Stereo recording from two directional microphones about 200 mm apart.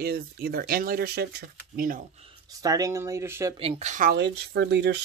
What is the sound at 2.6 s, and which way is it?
Speech, 15° right (ahead or behind).